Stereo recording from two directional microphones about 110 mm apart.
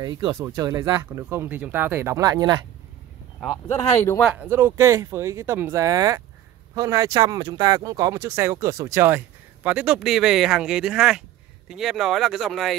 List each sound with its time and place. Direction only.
0.0 s speech: 40° right (ahead or behind)
0.6 s speech: 30° right (ahead or behind)
1.3 s speech: 20° right (ahead or behind)
2.2 s speech: 40° right (ahead or behind)
3.6 s speech: 25° left (ahead or behind)
4.2 s speech: 10° right (ahead or behind)